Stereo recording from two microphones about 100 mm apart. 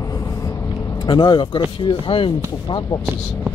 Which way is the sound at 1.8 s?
60° left (ahead or behind).